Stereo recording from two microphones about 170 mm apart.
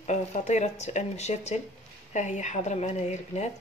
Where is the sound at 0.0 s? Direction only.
45° left (ahead or behind).